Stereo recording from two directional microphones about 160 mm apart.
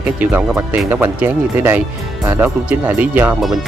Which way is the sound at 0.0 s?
10° right (ahead or behind).